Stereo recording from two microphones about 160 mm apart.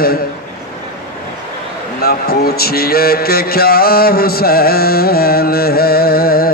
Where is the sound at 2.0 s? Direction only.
70° left (ahead or behind).